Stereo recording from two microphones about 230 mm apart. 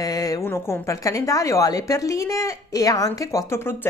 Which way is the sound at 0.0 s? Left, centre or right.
Centre.